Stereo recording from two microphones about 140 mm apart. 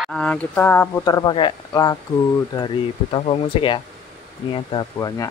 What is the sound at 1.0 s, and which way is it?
Speech, 30° left (ahead or behind).